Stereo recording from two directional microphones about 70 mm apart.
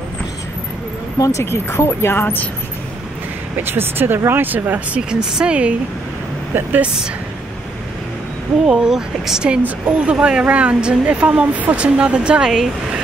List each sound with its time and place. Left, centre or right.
1.4 s speech: left
3.7 s speech: right; by 5.8 s centre
6.5 s speech: right
8.6 s speech: centre